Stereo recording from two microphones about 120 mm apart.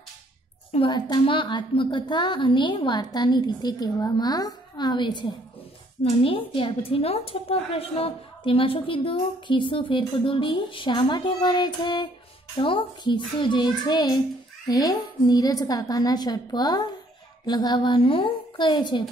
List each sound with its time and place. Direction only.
0.7 s a child's voice: 50° left (ahead or behind)
0.9 s a woman's voice: 40° left (ahead or behind)